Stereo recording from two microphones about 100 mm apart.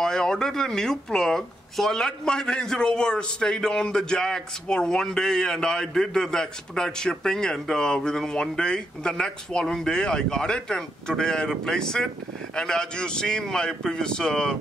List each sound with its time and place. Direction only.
0.0 s speech: 5° left (ahead or behind)